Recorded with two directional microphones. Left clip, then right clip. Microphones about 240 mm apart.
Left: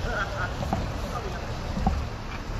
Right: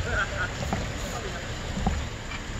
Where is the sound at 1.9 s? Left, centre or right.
Right.